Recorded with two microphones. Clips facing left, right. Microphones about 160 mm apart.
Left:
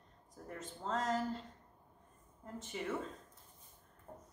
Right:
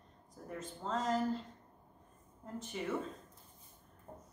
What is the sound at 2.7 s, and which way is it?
Speech, centre (ahead or behind).